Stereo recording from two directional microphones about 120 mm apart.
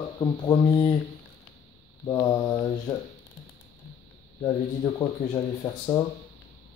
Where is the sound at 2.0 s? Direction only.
35° left (ahead or behind).